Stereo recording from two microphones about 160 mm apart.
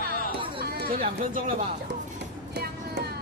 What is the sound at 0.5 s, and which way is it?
Chatter, 75° right (ahead or behind).